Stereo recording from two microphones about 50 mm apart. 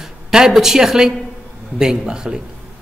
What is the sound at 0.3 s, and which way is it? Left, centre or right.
A man's voice, centre.